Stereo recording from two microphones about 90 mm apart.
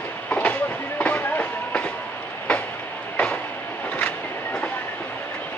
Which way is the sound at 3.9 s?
15° left (ahead or behind).